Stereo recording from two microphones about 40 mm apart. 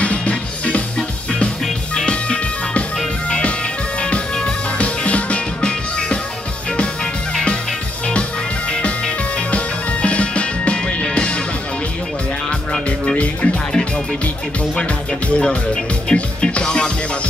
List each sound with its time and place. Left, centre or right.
0.0 s music: left
4.7 s music: left
10.0 s music: left
13.1 s music: left
14.8 s music: left